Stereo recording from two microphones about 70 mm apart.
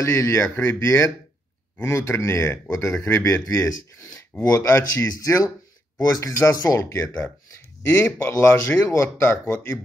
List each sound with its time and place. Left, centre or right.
0.0 s speech: left
3.4 s speech: left
4.6 s speech: left
7.8 s speech: left